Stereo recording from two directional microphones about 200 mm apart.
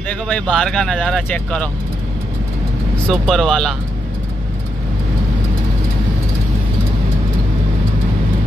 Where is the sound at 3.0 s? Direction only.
Centre (ahead or behind).